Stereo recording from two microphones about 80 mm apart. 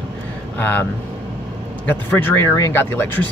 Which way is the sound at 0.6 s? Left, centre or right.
Left.